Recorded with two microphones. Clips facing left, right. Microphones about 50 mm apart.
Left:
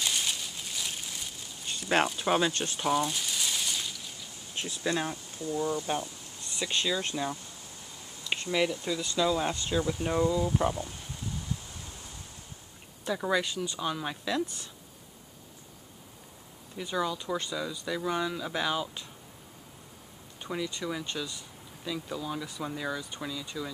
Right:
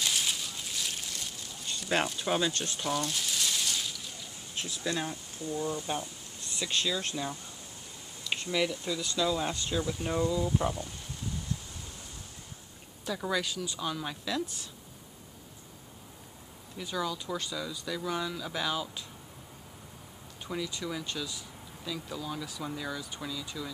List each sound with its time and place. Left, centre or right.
0.0 s a sound: centre
2.0 s speech: centre
13.0 s speech: centre
16.7 s speech: centre
20.4 s speech: centre